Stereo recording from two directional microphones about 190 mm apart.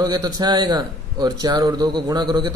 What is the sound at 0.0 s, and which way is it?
A man's voice, 20° right (ahead or behind).